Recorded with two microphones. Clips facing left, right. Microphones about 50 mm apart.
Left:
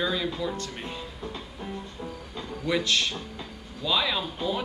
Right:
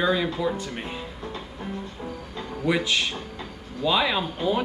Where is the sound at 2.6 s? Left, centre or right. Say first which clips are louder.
Right 2 dB; centre.